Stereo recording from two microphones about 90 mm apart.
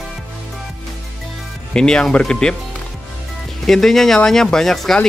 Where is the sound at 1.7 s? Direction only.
10° left (ahead or behind).